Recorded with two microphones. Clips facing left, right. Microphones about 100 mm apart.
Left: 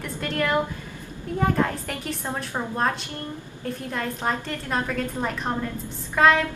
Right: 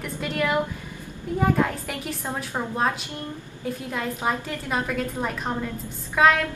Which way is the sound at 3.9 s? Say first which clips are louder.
Even; 10° right (ahead or behind).